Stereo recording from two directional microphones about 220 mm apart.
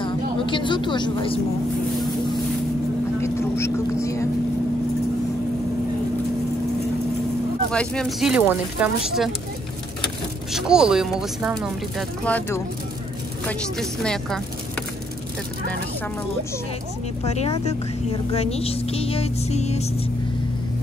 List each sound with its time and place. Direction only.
0.5 s speech: 20° left (ahead or behind)
3.2 s vehicle: 10° left (ahead or behind)
4.0 s speech: 15° left (ahead or behind)
7.7 s speech: 5° left (ahead or behind)
10.5 s speech: 5° right (ahead or behind)
17.2 s speech: 30° left (ahead or behind)